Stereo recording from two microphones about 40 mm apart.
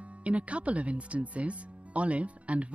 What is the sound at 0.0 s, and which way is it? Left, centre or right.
Speech, right.